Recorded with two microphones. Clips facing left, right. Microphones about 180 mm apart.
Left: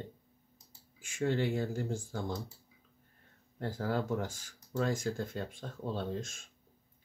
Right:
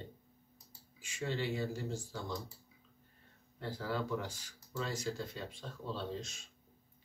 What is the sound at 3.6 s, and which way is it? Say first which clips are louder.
Speech: left 4 dB; 50° left (ahead or behind).